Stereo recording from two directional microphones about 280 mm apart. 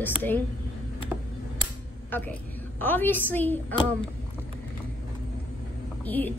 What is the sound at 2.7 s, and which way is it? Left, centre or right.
A woman's voice, centre.